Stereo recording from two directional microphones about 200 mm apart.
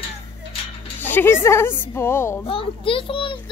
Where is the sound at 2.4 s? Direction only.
25° left (ahead or behind).